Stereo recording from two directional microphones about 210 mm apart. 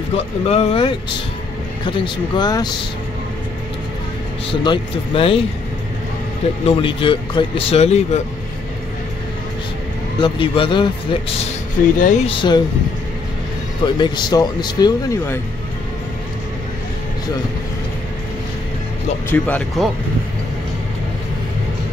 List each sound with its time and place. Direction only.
0.1 s a man's voice: 30° left (ahead or behind)
4.5 s a man's voice: 25° left (ahead or behind)
6.6 s a man's voice: 25° left (ahead or behind)
10.2 s a man's voice: 25° left (ahead or behind)
13.8 s a man's voice: 20° left (ahead or behind)
19.3 s speech: 5° left (ahead or behind)